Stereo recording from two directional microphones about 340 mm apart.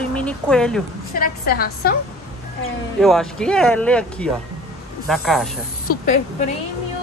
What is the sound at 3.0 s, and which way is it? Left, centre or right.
Speech, centre.